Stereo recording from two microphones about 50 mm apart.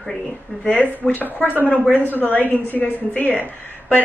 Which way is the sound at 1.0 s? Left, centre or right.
Left.